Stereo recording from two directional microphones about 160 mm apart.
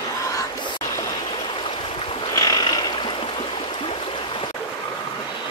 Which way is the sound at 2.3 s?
20° left (ahead or behind).